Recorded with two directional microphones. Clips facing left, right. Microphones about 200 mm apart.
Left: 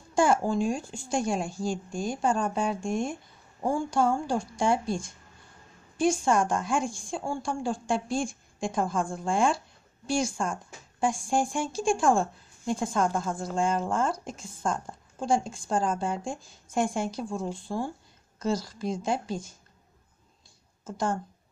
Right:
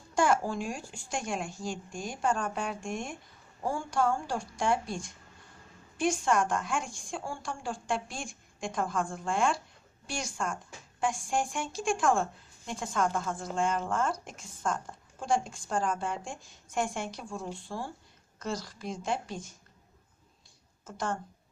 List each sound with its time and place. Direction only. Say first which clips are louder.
0.4 s a woman's voice: left 7 dB; 25° left (ahead or behind)
3.6 s speech: left 4 dB; 20° left (ahead or behind)
5.9 s a woman's voice: left 4 dB; 30° left (ahead or behind)
18.4 s a woman's voice: left 7 dB; 35° left (ahead or behind)